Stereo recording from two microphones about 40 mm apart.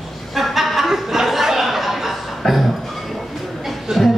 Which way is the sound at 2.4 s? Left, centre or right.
Centre.